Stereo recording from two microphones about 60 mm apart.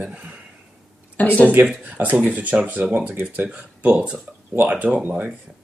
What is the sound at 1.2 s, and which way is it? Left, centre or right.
Speech, left.